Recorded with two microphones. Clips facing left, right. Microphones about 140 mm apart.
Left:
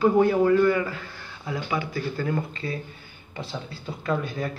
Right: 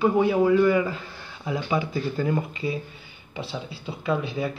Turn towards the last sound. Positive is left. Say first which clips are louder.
# right 1 dB
turn(degrees=-5)  # may be behind; listen again after turning